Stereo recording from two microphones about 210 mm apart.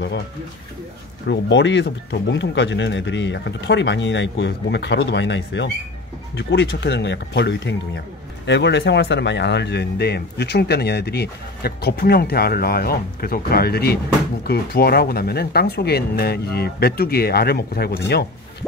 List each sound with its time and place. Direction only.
1.2 s speech: 55° left (ahead or behind)